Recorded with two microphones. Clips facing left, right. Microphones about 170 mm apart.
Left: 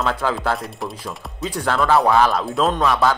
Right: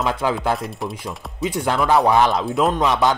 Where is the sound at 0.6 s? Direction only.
Centre (ahead or behind).